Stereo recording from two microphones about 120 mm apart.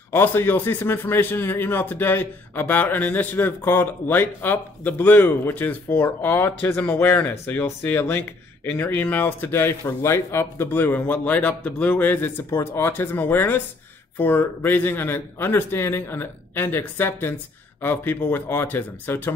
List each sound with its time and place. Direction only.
0.1 s a man's voice: 20° left (ahead or behind)